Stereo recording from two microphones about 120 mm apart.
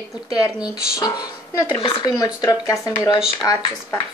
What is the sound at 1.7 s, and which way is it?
Speech, 45° left (ahead or behind).